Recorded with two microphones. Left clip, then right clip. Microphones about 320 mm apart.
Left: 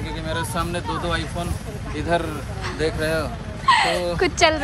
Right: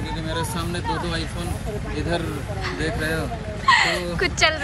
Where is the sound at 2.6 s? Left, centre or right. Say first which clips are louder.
Left 3 dB; centre.